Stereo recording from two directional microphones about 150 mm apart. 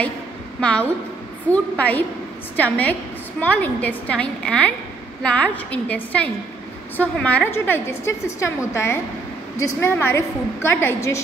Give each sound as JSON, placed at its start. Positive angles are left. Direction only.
{"t": 0.6, "sound": "a woman's voice", "side_deg": 5}